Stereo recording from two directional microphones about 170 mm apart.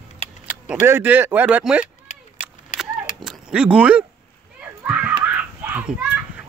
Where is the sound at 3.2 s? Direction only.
5° right (ahead or behind).